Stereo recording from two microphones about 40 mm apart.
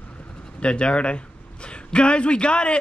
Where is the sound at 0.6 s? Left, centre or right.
Left.